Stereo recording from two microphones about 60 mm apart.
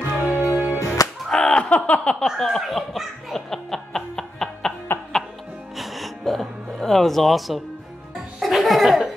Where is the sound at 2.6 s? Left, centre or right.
Centre.